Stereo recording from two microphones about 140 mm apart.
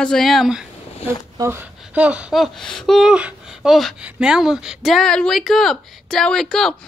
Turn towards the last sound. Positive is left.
turn(degrees=5)  # may be behind; listen again after turning